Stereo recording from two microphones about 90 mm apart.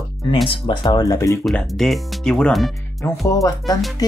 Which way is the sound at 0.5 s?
60° left (ahead or behind).